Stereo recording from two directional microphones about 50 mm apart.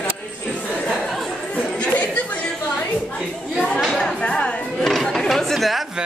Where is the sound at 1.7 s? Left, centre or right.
Left.